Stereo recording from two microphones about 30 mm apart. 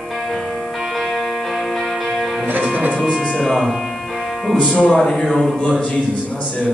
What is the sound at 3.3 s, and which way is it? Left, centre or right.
Music, centre.